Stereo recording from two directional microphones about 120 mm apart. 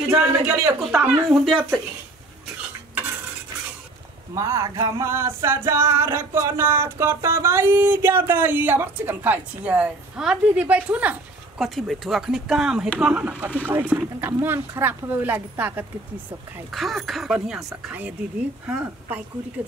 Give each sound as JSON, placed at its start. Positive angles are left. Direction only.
{"t": 0.1, "sound": "music", "side_deg": -20}
{"t": 1.3, "sound": "speech", "side_deg": 0}
{"t": 4.4, "sound": "music", "side_deg": -25}
{"t": 13.0, "sound": "speech", "side_deg": -10}
{"t": 16.7, "sound": "speech", "side_deg": 0}